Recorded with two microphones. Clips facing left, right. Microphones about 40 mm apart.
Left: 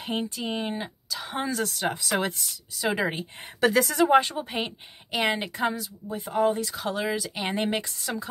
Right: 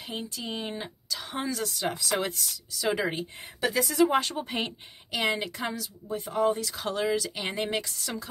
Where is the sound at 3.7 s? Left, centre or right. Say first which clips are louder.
Left 1 dB; left.